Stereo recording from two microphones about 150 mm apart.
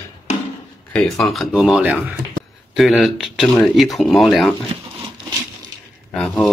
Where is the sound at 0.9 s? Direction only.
5° left (ahead or behind).